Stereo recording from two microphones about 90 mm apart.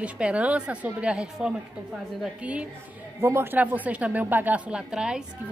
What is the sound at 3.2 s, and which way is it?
A woman's voice, 25° right (ahead or behind).